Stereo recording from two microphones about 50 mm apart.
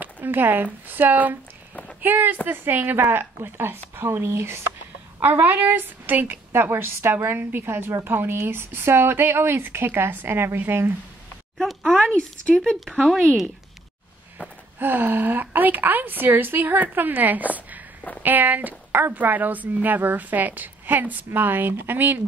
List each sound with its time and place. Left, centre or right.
0.0 s a woman's voice: right
11.5 s a sound: centre
14.8 s a woman's voice: right